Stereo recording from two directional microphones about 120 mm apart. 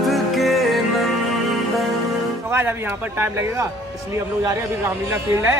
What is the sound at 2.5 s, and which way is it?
Speech, 20° right (ahead or behind).